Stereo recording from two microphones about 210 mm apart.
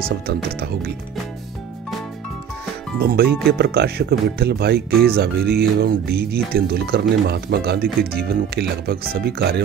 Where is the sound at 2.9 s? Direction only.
50° right (ahead or behind).